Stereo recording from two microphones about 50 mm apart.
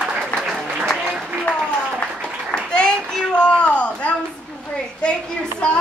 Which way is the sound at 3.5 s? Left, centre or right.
Left.